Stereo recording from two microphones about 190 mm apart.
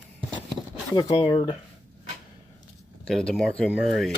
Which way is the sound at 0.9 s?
25° left (ahead or behind).